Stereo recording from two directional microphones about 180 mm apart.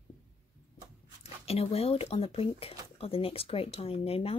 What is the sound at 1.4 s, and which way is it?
Speech, 35° left (ahead or behind).